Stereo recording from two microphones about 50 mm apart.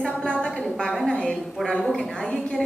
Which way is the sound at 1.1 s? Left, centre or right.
Centre.